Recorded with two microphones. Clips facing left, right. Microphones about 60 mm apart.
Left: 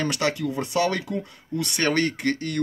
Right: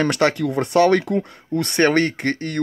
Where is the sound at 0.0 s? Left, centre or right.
Right.